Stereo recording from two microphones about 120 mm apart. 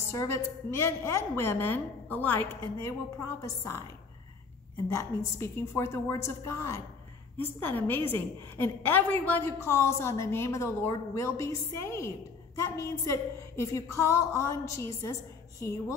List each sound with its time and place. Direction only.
0.1 s a woman's voice: 25° left (ahead or behind)
4.8 s a woman's voice: 25° left (ahead or behind)